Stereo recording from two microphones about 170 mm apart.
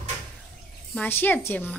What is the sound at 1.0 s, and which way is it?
Speech, 10° left (ahead or behind).